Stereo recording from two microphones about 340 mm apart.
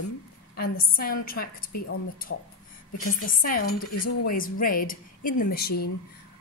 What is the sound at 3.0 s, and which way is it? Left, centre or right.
A woman's voice, left.